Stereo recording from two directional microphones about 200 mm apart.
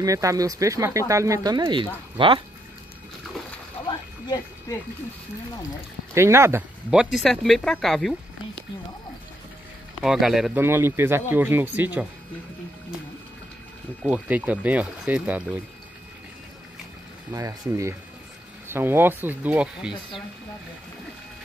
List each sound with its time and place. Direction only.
0.0 s speech: 15° right (ahead or behind)
6.1 s speech: 15° right (ahead or behind)
10.0 s speech: centre (ahead or behind)
14.0 s speech: 10° right (ahead or behind)
17.3 s speech: 15° right (ahead or behind)